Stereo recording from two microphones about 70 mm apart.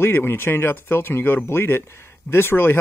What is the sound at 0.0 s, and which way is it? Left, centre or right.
A man's voice, left.